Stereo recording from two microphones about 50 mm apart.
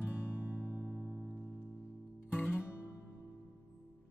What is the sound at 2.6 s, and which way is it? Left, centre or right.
Music, left.